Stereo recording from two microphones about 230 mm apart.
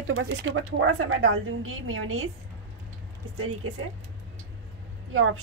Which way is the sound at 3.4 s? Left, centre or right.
Right.